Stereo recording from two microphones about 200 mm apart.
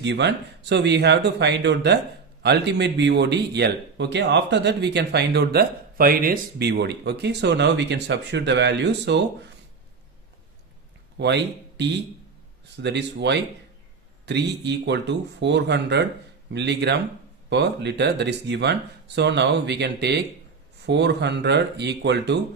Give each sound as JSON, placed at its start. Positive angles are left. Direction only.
{"t": 0.0, "sound": "speech", "side_deg": -60}
{"t": 11.1, "sound": "speech", "side_deg": -60}